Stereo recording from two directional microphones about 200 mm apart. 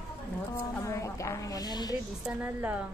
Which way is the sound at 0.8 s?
15° left (ahead or behind).